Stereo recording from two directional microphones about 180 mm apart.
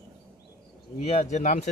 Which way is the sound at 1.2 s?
45° left (ahead or behind).